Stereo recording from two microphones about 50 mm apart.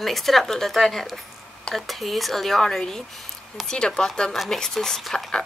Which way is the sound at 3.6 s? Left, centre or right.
Centre.